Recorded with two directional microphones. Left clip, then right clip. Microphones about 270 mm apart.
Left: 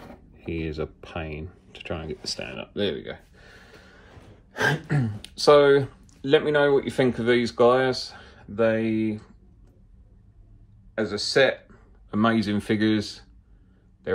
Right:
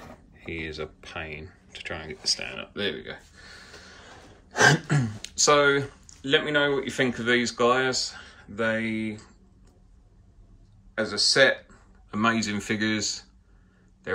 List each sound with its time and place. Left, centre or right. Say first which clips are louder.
0.5 s speech: left 3 dB; centre
4.5 s throat clearing: right 5 dB; right
4.8 s speech: even; centre
5.2 s speech: left 4 dB; centre
11.0 s speech: right 1 dB; centre